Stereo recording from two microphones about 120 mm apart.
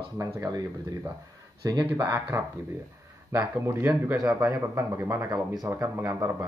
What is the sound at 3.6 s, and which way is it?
Speech, 20° right (ahead or behind).